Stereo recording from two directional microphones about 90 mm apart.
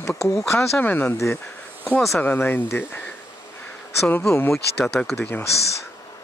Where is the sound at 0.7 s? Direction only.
20° left (ahead or behind).